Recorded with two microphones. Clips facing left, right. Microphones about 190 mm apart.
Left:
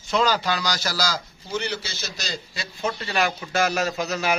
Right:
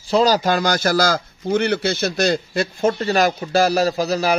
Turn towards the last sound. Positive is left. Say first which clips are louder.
# right 6 dB
turn(degrees=-35)  # may be behind; listen again after turning